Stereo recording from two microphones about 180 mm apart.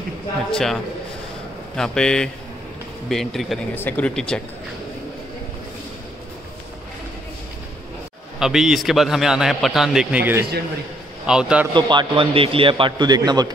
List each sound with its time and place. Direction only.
0.5 s a man's voice: 5° left (ahead or behind)
1.8 s a man's voice: 5° left (ahead or behind)
8.4 s a man's voice: 5° right (ahead or behind)
11.7 s a man's voice: 25° right (ahead or behind)